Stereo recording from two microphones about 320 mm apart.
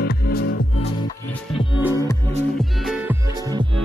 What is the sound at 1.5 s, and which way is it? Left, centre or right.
Music, centre.